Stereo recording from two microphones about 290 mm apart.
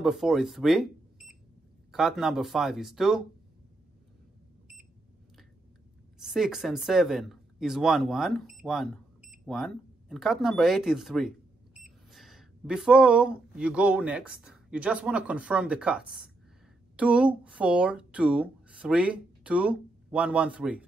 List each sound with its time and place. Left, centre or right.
0.0 s speech: centre
6.1 s speech: centre